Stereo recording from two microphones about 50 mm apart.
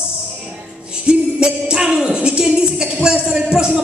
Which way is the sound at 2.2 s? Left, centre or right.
Centre.